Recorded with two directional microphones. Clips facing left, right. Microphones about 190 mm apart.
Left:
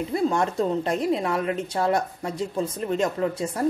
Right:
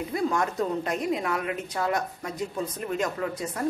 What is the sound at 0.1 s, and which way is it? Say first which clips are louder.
Speech: left 3 dB; 30° left (ahead or behind).